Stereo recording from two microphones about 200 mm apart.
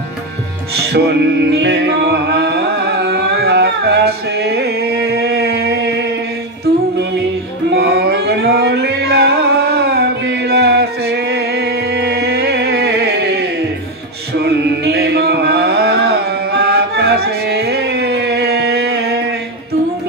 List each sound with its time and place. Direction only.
0.7 s music: 55° right (ahead or behind)
7.7 s music: 55° right (ahead or behind)
14.4 s a sound: 55° right (ahead or behind)